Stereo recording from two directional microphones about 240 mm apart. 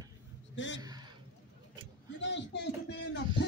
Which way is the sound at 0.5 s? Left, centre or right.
Left.